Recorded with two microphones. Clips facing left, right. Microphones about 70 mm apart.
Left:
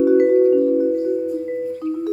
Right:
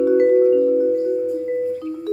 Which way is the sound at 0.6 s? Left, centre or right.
Left.